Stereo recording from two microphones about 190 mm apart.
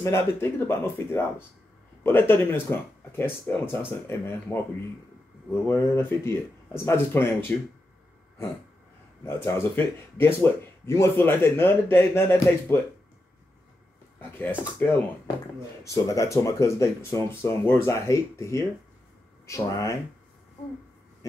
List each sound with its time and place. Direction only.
0.0 s speech: 15° left (ahead or behind)
9.5 s speech: 10° left (ahead or behind)
14.4 s speech: 10° left (ahead or behind)
15.9 s speech: 15° left (ahead or behind)